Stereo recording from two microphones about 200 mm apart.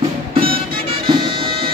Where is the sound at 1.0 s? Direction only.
25° right (ahead or behind).